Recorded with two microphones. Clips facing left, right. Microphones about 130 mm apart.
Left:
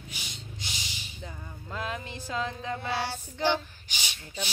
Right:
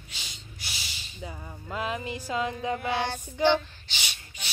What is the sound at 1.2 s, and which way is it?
Music, 15° right (ahead or behind).